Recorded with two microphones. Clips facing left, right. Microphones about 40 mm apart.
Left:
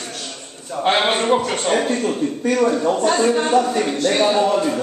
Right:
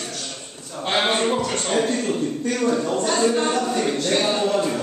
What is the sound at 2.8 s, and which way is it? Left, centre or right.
A man's voice, left.